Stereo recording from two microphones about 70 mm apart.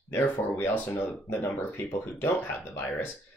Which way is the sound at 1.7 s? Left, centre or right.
Left.